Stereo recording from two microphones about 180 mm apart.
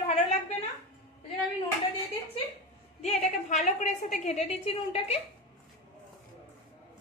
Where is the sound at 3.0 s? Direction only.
40° left (ahead or behind).